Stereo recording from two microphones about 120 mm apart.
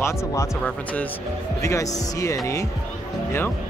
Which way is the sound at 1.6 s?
25° left (ahead or behind).